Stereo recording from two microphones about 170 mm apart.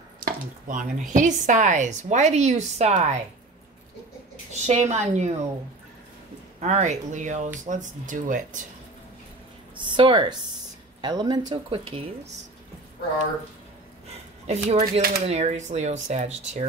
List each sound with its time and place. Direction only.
0.2 s a sound: 50° right (ahead or behind)
1.1 s a woman's voice: 45° right (ahead or behind)
4.5 s a woman's voice: 40° right (ahead or behind)
6.6 s a woman's voice: 45° right (ahead or behind)
9.8 s speech: 25° right (ahead or behind)
14.4 s speech: 40° right (ahead or behind)
14.8 s speech: 60° right (ahead or behind)
15.2 s speech: 40° right (ahead or behind)